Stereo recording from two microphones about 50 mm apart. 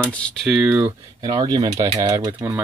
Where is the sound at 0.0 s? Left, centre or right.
Left.